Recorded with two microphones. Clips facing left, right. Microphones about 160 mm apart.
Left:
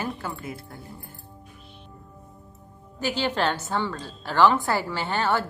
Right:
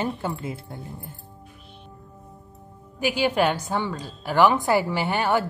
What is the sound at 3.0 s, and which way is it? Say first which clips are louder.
A woman's voice: right 4 dB; 10° right (ahead or behind).